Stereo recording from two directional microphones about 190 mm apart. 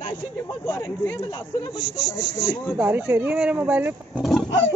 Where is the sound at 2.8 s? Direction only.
10° right (ahead or behind).